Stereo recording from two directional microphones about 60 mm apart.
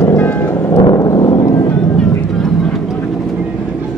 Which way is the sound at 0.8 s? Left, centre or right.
Left.